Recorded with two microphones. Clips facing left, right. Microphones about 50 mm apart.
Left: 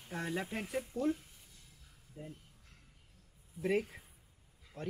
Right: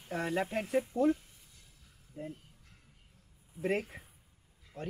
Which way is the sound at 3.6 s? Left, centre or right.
Right.